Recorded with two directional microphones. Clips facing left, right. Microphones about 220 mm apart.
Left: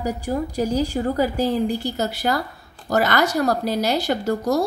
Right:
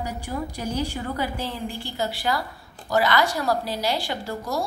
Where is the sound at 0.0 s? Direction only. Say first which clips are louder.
Left 6 dB; 40° left (ahead or behind).